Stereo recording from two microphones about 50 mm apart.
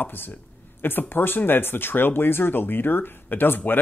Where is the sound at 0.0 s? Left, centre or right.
Left.